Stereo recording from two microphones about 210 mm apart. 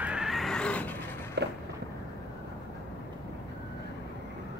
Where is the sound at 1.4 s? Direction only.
50° right (ahead or behind).